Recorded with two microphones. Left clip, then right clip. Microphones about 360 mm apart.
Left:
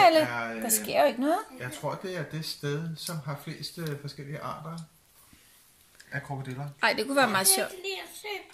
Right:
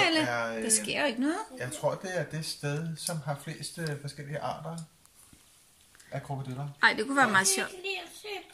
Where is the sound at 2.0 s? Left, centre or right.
Right.